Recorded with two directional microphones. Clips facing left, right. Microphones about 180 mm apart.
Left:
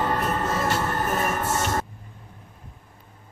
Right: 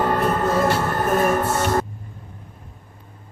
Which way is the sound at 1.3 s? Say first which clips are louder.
Right 6 dB; 55° right (ahead or behind).